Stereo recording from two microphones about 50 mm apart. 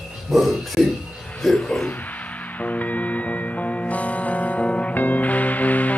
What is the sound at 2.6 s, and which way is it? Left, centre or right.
Music, left.